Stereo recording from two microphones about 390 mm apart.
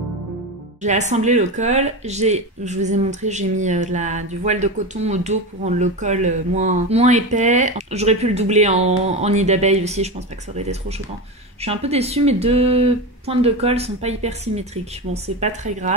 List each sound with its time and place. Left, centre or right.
0.8 s speech: centre